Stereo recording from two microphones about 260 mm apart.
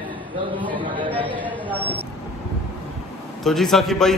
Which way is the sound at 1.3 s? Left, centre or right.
Centre.